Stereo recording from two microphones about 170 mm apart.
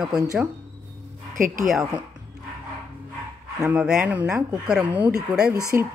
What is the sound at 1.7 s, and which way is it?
Speech, 5° right (ahead or behind).